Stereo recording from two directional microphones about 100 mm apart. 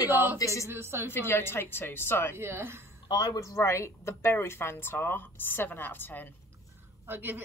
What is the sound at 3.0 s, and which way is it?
Speech, 40° left (ahead or behind).